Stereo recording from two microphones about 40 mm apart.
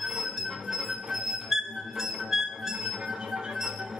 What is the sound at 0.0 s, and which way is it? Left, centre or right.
Music, centre.